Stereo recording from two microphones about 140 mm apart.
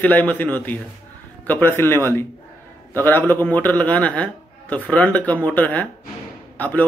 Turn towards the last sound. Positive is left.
turn(degrees=10)  # may be behind; listen again after turning